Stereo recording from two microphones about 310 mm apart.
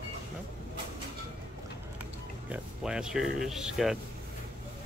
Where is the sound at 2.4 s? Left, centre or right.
Centre.